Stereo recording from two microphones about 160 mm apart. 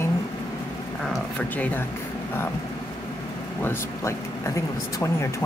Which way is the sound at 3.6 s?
20° left (ahead or behind).